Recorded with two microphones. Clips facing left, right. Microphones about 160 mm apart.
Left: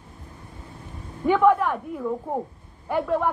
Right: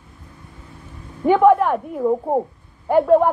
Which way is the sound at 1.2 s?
20° right (ahead or behind).